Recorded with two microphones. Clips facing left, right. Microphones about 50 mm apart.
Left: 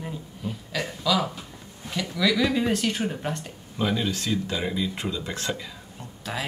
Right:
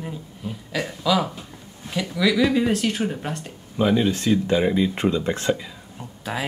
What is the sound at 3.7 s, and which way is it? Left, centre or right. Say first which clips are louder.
Speech: right 6 dB; centre.